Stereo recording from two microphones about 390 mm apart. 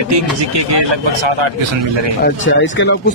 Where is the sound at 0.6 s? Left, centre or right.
Right.